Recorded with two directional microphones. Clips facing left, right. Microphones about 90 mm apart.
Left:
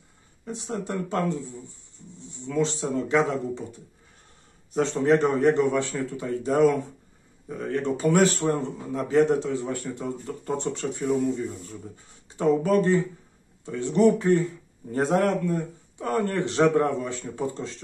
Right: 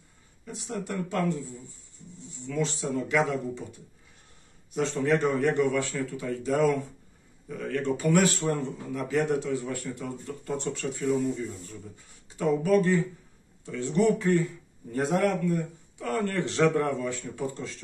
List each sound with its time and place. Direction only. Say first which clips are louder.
0.5 s speech: left 3 dB; 30° left (ahead or behind)
4.7 s speech: left 4 dB; 25° left (ahead or behind)
12.4 s speech: left 2 dB; 30° left (ahead or behind)